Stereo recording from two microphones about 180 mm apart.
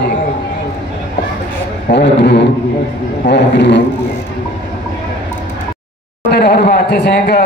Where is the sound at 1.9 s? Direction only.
70° left (ahead or behind).